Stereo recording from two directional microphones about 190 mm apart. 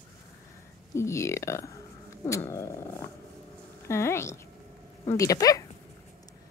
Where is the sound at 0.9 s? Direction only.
15° left (ahead or behind).